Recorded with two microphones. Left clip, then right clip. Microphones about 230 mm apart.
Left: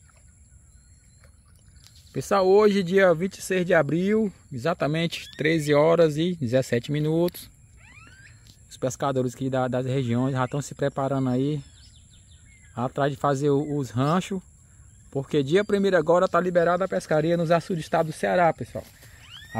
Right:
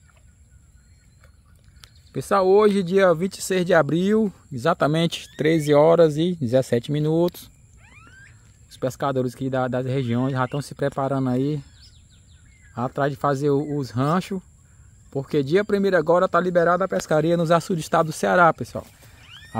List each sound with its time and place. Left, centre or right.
2.1 s speech: centre
8.7 s speech: centre
12.7 s speech: centre
16.5 s speech: centre